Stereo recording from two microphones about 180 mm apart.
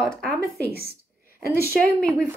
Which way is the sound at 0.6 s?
60° right (ahead or behind).